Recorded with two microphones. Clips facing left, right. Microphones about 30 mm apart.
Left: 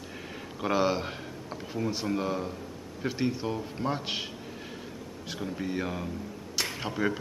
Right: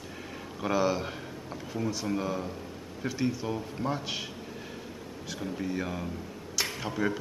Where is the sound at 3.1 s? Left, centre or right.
Left.